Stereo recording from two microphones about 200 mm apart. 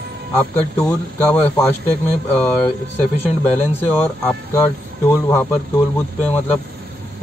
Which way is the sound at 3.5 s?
10° left (ahead or behind).